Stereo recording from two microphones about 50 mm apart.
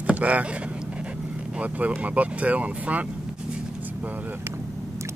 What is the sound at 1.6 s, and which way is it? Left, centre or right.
Speech, right.